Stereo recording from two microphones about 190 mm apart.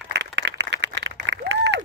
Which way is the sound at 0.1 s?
65° right (ahead or behind).